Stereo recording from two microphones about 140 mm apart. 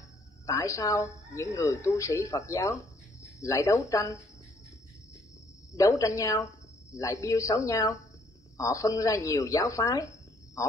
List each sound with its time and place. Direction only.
0.5 s speech: 20° left (ahead or behind)
5.8 s speech: 25° left (ahead or behind)